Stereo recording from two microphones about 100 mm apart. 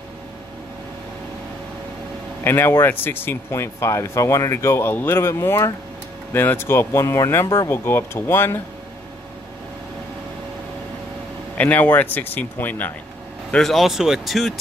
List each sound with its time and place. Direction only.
2.4 s speech: 25° left (ahead or behind)
11.5 s speech: 15° left (ahead or behind)
13.5 s speech: 5° left (ahead or behind)